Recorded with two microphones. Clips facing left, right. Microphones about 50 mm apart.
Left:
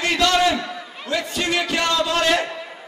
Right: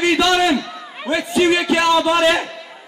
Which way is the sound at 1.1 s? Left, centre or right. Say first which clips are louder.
Right 7 dB; centre.